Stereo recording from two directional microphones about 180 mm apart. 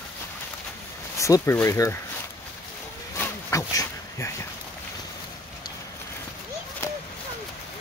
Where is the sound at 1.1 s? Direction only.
15° left (ahead or behind).